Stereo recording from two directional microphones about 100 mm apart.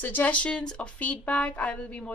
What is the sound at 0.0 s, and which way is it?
Speech, 20° left (ahead or behind).